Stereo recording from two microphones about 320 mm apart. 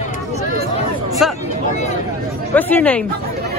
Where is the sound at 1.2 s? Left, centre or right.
Centre.